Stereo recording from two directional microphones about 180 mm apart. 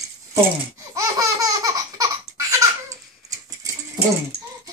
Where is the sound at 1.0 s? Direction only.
20° right (ahead or behind).